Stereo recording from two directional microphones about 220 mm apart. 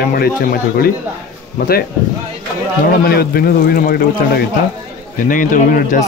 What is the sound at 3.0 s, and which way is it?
Speech, 45° left (ahead or behind).